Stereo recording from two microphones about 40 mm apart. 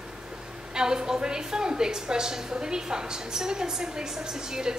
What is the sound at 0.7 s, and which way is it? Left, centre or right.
A woman's voice, centre.